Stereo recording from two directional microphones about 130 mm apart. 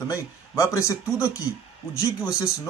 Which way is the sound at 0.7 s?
25° left (ahead or behind).